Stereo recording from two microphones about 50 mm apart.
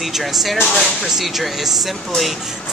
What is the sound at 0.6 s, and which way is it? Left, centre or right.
Speech, centre.